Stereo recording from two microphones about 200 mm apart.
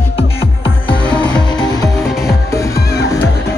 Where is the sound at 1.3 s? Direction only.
20° left (ahead or behind).